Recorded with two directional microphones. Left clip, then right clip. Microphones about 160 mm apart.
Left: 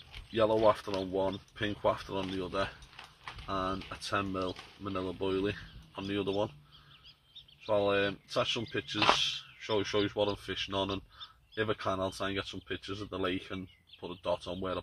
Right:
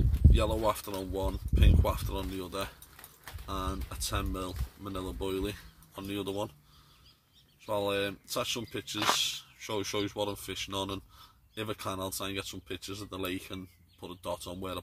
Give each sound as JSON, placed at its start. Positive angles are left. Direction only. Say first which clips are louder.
{"t": 0.4, "sound": "speech", "louder": "left 5 dB", "side_deg": -30}
{"t": 7.6, "sound": "speech", "louder": "left 2 dB", "side_deg": -35}